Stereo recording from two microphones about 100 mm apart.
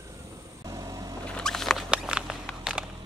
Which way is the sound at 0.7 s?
40° right (ahead or behind).